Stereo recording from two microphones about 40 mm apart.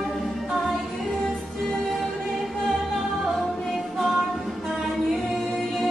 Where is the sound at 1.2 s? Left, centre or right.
Centre.